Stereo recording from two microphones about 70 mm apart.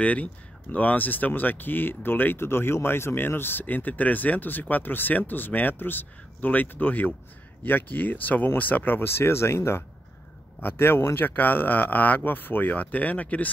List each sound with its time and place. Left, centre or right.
0.0 s speech: left